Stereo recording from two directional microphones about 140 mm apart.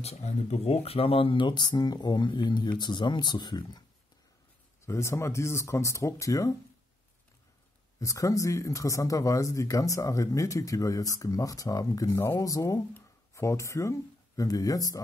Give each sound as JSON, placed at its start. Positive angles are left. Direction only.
{"t": 0.0, "sound": "speech", "side_deg": 50}
{"t": 4.8, "sound": "speech", "side_deg": 20}
{"t": 8.0, "sound": "speech", "side_deg": 25}